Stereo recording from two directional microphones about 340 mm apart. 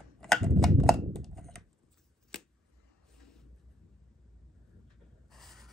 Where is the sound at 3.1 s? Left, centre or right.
Centre.